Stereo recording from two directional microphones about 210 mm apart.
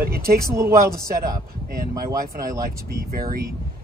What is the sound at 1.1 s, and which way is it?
Speech, 45° right (ahead or behind).